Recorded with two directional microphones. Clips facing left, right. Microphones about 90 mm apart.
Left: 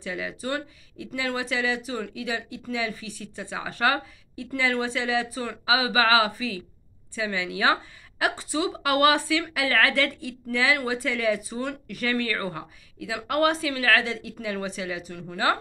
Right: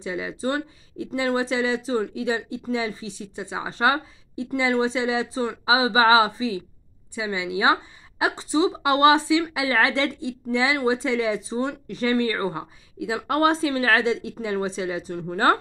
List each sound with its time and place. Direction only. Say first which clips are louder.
0.0 s a woman's voice: right 4 dB; 25° right (ahead or behind)